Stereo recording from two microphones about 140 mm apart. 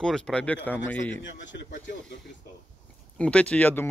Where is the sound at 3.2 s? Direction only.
10° left (ahead or behind).